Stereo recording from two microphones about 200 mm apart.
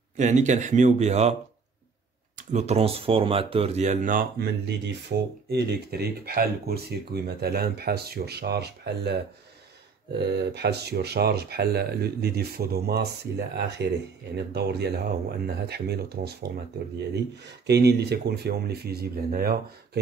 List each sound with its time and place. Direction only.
0.2 s speech: 35° right (ahead or behind)
2.3 s speech: 35° right (ahead or behind); by 13.0 s 50° right (ahead or behind)
14.5 s speech: 55° right (ahead or behind)